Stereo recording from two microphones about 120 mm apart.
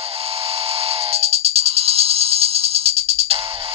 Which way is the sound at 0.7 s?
55° right (ahead or behind).